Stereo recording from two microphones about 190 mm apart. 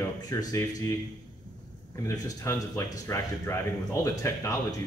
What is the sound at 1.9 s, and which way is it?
Speech, 15° left (ahead or behind).